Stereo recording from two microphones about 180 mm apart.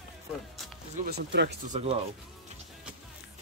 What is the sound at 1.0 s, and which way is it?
Speech, 70° right (ahead or behind).